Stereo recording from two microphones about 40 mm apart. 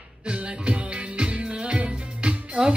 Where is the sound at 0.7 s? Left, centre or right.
Right.